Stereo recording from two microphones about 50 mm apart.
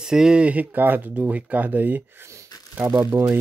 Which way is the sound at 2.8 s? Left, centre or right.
Right.